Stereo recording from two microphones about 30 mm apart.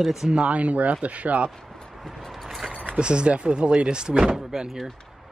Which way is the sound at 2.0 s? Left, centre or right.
Centre.